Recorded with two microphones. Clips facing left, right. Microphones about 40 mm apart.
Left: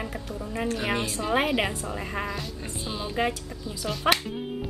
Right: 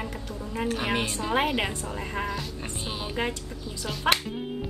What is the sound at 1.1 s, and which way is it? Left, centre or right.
A woman's voice, centre.